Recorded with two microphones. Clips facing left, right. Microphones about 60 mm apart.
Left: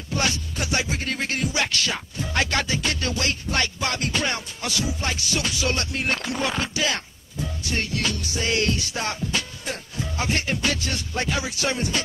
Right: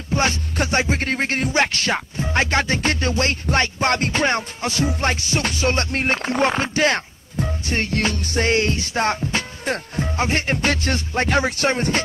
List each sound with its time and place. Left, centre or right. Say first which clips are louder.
0.1 s music: right 5 dB; right
6.3 s speech: right 6 dB; right
8.5 s music: right 4 dB; right